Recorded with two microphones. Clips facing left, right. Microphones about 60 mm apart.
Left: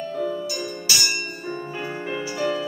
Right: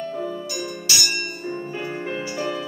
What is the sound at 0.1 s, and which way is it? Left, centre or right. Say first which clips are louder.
Music: left 2 dB; right.